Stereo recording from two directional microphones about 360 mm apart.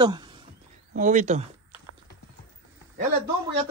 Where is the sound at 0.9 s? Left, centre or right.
Right.